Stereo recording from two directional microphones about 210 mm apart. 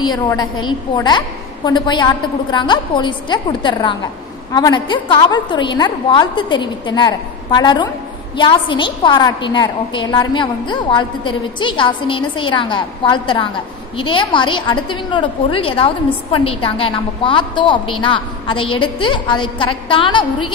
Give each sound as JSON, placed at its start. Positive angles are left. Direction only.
{"t": 0.0, "sound": "a woman's voice", "side_deg": 20}